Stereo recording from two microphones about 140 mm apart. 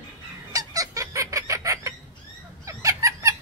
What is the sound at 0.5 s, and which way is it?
Fowl, 25° right (ahead or behind).